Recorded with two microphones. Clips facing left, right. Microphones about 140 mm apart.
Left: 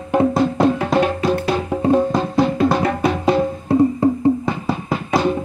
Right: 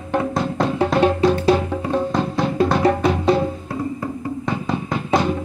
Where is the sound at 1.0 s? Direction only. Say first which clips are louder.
Right 2 dB; 30° right (ahead or behind).